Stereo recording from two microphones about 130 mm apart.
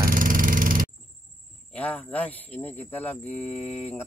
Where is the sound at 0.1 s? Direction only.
90° right.